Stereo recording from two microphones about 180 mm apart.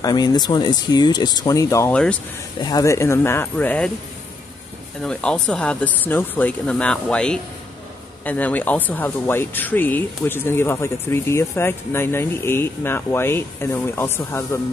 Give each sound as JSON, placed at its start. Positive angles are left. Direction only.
{"t": 0.0, "sound": "speech", "side_deg": 20}
{"t": 2.6, "sound": "speech", "side_deg": 20}
{"t": 5.0, "sound": "speech", "side_deg": 5}